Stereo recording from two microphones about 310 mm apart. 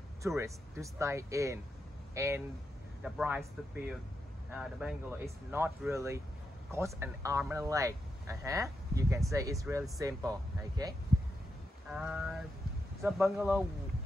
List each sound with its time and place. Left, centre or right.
0.2 s speech: centre
4.5 s speech: centre